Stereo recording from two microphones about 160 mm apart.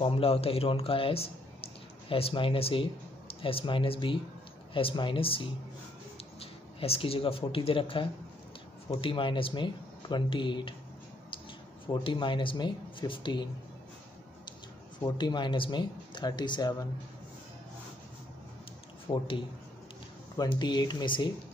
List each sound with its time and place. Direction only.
0.0 s speech: 35° left (ahead or behind)
11.9 s speech: 30° left (ahead or behind)
15.0 s speech: 30° left (ahead or behind)
19.0 s speech: 35° left (ahead or behind)